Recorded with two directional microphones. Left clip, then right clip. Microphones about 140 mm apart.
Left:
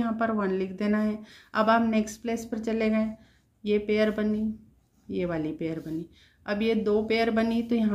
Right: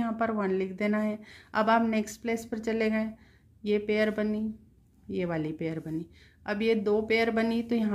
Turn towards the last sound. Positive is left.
turn(degrees=-30)  # may be behind; listen again after turning